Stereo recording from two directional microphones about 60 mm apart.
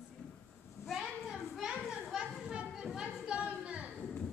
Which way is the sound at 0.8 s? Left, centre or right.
Centre.